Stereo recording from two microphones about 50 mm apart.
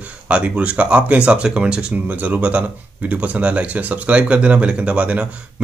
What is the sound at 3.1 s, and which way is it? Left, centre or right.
Speech, right.